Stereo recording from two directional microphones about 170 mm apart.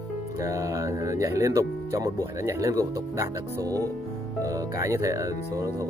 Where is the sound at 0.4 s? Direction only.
20° right (ahead or behind).